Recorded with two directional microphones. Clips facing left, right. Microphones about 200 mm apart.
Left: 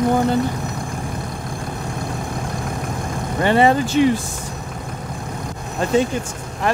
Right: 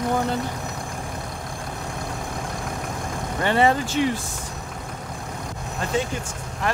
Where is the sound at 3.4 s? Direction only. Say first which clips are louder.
Left 5 dB; 15° left (ahead or behind).